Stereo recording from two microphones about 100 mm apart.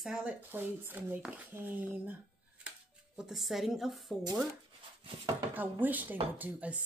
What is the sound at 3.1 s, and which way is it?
Speech, 5° right (ahead or behind).